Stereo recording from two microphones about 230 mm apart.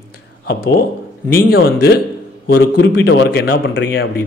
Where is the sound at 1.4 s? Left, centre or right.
Left.